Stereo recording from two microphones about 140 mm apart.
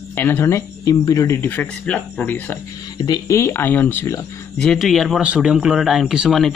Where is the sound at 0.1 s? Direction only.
15° left (ahead or behind).